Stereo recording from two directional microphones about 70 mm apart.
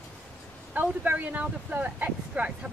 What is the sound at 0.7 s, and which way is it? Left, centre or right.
Speech, right.